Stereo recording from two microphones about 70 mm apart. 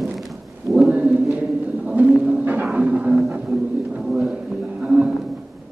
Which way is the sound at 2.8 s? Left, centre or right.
Right.